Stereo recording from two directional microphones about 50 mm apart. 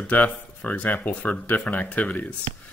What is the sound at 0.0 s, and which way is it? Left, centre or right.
Speech, left.